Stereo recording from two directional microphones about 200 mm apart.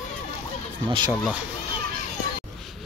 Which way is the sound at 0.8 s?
25° right (ahead or behind).